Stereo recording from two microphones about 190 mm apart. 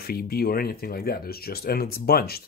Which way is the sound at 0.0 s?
55° left (ahead or behind).